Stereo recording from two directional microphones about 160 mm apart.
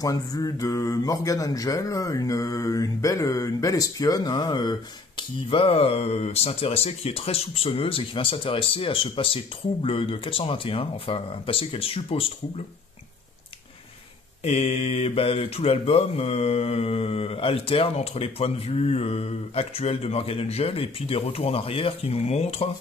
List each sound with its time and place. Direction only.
0.0 s speech: 25° left (ahead or behind)
14.4 s speech: 40° left (ahead or behind)